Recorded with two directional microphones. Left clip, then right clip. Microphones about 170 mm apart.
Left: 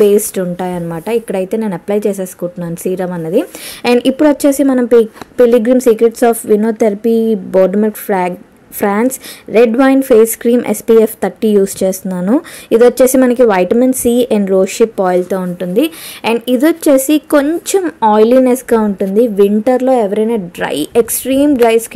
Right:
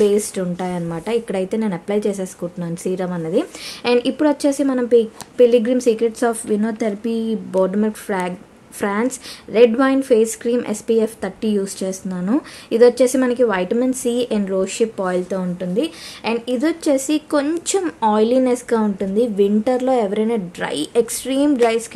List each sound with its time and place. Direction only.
0.0 s a woman's voice: 35° left (ahead or behind)
15.2 s a woman's voice: 45° left (ahead or behind)
17.5 s a woman's voice: 25° left (ahead or behind)